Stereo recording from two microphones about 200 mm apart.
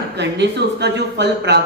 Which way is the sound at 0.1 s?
60° right (ahead or behind).